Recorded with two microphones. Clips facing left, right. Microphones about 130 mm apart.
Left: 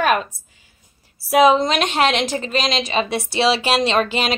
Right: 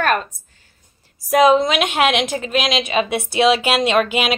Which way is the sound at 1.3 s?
Centre (ahead or behind).